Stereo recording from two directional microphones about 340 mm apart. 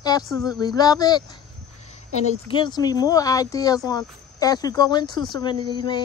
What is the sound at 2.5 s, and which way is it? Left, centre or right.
Speech, centre.